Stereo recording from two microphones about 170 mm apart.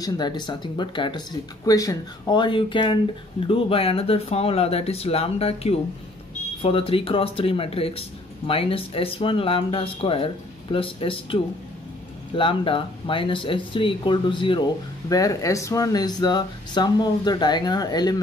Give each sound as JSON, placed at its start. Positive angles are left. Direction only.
{"t": 0.0, "sound": "speech", "side_deg": 25}